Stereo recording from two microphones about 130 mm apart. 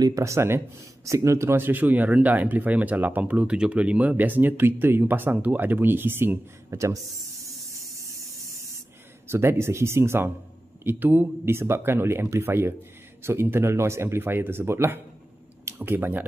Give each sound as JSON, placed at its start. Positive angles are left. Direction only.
{"t": 0.0, "sound": "speech", "side_deg": -25}
{"t": 9.3, "sound": "speech", "side_deg": -20}